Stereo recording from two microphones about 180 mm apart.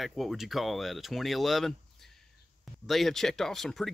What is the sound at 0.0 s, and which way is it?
Speech, centre (ahead or behind).